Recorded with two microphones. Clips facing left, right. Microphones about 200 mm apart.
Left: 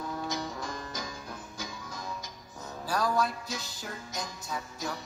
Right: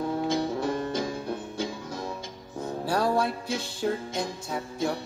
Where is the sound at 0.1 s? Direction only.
30° right (ahead or behind).